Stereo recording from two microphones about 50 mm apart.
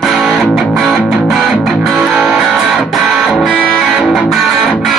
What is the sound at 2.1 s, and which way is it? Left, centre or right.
Music, right.